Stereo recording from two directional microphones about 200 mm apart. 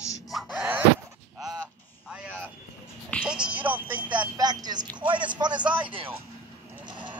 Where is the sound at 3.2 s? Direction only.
5° right (ahead or behind).